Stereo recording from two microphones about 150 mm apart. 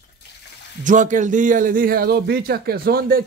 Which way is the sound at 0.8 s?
60° right (ahead or behind).